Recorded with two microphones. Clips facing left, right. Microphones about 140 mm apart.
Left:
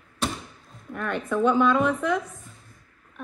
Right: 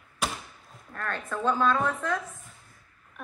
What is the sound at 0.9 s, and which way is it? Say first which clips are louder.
Speech: left 7 dB; 10° left (ahead or behind).